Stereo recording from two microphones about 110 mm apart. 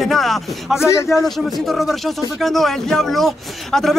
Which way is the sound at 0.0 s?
Centre (ahead or behind).